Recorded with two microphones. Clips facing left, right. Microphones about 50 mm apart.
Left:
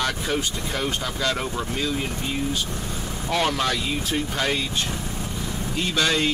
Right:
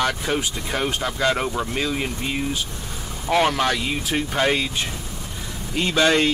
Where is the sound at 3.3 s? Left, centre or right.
Centre.